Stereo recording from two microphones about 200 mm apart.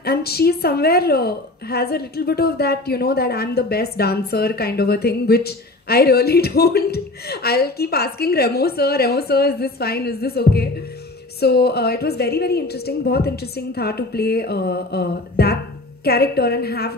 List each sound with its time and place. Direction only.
0.0 s a woman's voice: 50° left (ahead or behind)